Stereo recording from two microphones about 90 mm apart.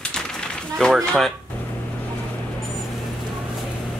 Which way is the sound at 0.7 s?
5° left (ahead or behind).